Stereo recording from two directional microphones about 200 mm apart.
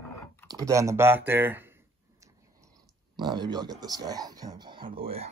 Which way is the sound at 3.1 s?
20° right (ahead or behind).